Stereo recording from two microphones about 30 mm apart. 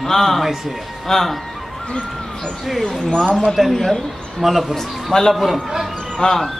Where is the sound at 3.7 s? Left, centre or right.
Centre.